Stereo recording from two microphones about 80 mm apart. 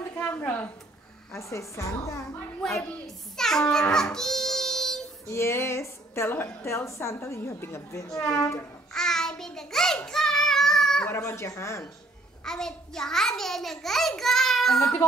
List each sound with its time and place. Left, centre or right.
0.4 s a woman's voice: left
1.3 s a woman's voice: left
3.1 s a child's voice: centre
3.9 s a sound: centre
5.3 s a woman's voice: left
8.2 s a woman's voice: centre
8.9 s child singing: centre
11.1 s a woman's voice: left
12.4 s a child's voice: centre